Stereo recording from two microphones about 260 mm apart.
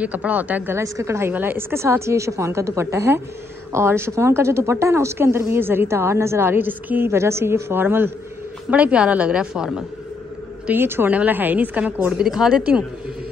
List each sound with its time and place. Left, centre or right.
0.0 s a woman's voice: centre